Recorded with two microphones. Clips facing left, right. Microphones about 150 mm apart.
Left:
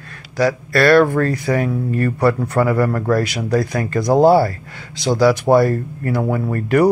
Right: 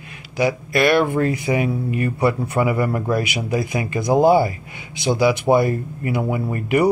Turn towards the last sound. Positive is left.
turn(degrees=-15)  # may be behind; listen again after turning